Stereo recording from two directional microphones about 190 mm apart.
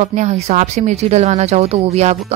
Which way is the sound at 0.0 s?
40° right (ahead or behind).